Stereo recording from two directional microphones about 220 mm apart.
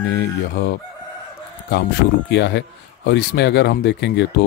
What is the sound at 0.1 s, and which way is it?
Speech, 50° left (ahead or behind).